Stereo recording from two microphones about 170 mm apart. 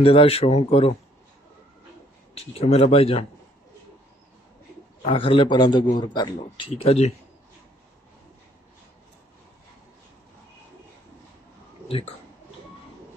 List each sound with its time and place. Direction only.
0.0 s a man's voice: 30° left (ahead or behind)
2.3 s a man's voice: 35° left (ahead or behind)
5.0 s a man's voice: 35° left (ahead or behind)